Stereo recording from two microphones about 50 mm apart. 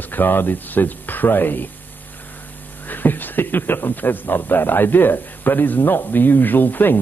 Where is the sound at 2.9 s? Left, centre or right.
Left.